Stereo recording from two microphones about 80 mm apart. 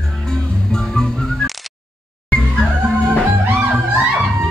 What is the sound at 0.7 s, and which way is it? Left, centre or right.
Music, centre.